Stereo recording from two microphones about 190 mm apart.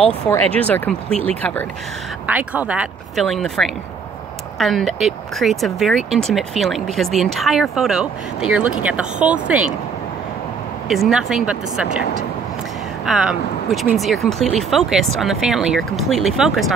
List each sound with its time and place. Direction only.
0.3 s speech: 10° left (ahead or behind)
2.2 s speech: 10° right (ahead or behind)
10.9 s speech: centre (ahead or behind)
13.0 s speech: 5° right (ahead or behind)